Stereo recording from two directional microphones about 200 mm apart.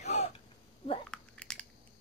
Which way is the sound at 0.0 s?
35° left (ahead or behind).